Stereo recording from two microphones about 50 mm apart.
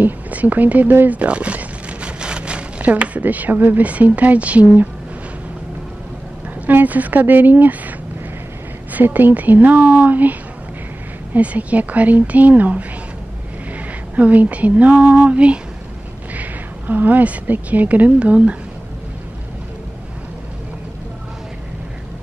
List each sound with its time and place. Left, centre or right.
0.0 s a sound: right
2.9 s speech: right
6.7 s speech: right
8.9 s speech: right
11.3 s speech: right
13.7 s female singing: right
16.3 s speech: right